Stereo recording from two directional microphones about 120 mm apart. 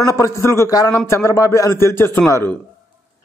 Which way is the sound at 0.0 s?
25° left (ahead or behind).